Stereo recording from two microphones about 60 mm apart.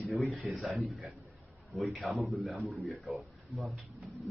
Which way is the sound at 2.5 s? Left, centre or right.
Centre.